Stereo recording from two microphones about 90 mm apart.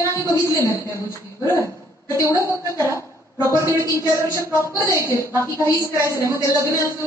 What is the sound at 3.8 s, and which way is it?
A woman's voice, 30° left (ahead or behind).